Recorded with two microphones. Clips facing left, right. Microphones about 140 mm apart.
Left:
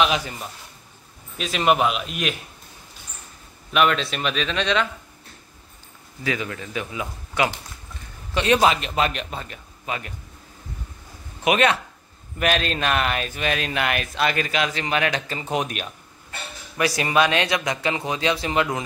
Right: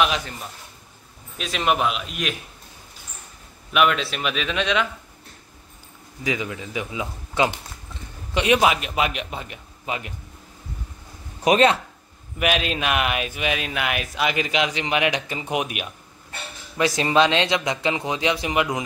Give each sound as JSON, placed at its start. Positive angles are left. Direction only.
{"t": 0.0, "sound": "speech", "side_deg": 5}
{"t": 3.7, "sound": "speech", "side_deg": -5}
{"t": 6.2, "sound": "speech", "side_deg": -15}
{"t": 11.4, "sound": "speech", "side_deg": -30}
{"t": 12.4, "sound": "speech", "side_deg": -5}
{"t": 16.7, "sound": "speech", "side_deg": -20}